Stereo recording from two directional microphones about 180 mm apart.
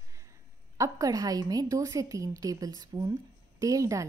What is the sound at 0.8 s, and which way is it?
A woman's voice, 20° right (ahead or behind).